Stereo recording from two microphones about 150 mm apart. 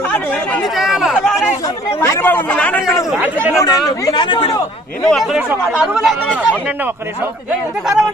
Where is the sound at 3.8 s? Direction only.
30° left (ahead or behind).